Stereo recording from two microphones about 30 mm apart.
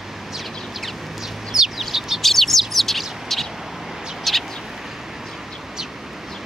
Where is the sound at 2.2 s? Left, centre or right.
Centre.